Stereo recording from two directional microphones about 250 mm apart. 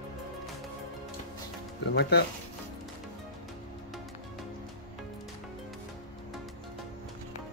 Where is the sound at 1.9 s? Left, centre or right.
Left.